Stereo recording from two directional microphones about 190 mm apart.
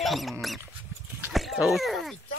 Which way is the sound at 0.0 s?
Centre (ahead or behind).